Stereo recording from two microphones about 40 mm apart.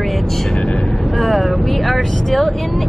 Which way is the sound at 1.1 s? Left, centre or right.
Centre.